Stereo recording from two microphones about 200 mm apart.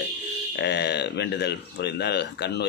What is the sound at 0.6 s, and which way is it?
Speech, 55° left (ahead or behind).